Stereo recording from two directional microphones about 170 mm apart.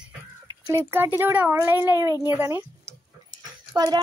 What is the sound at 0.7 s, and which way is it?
A child's voice, 15° right (ahead or behind).